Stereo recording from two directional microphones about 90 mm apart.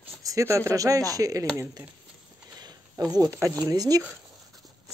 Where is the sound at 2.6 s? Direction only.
45° right (ahead or behind).